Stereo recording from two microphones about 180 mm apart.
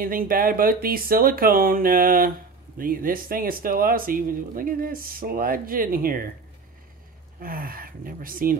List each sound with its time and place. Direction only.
0.0 s speech: 50° right (ahead or behind)
7.3 s speech: 55° right (ahead or behind)